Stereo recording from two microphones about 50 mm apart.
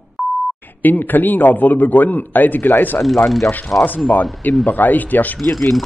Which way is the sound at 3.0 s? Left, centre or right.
Centre.